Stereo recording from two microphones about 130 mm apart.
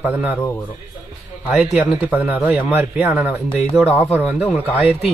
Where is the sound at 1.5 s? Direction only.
10° right (ahead or behind).